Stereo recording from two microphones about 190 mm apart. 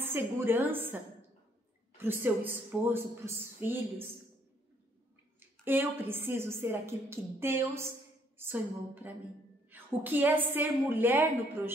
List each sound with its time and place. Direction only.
0.0 s a woman's voice: 10° right (ahead or behind)
2.0 s a woman's voice: 10° right (ahead or behind)
5.4 s a woman's voice: 10° right (ahead or behind)